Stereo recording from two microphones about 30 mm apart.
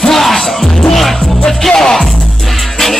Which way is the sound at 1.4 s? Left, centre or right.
Centre.